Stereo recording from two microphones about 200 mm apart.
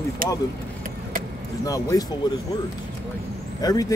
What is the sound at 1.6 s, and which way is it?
Speech, 15° left (ahead or behind).